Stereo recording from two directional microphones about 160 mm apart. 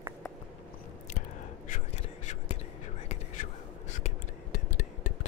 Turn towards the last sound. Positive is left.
turn(degrees=50)  # may be behind; listen again after turning